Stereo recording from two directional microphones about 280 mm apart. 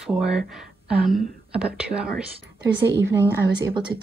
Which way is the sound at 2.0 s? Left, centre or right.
Right.